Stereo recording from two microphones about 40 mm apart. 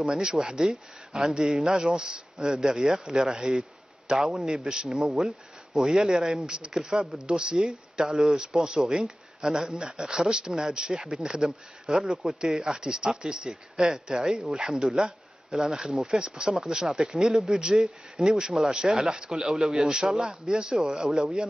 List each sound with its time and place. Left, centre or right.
0.0 s speech: centre
5.1 s speech: centre
5.9 s speech: centre
8.6 s speech: centre
11.4 s speech: right
11.9 s speech: centre